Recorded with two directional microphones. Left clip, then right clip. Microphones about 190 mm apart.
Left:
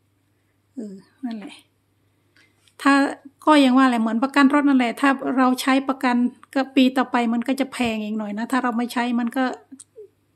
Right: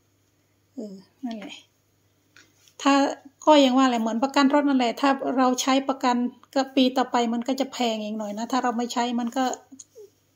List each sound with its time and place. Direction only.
0.7 s a child's voice: 15° left (ahead or behind)
2.8 s a woman's voice: 20° left (ahead or behind)